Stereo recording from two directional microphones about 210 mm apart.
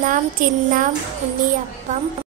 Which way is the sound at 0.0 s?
40° right (ahead or behind).